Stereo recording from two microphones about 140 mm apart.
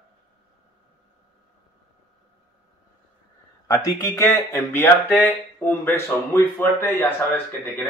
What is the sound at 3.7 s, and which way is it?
Speech, 25° left (ahead or behind).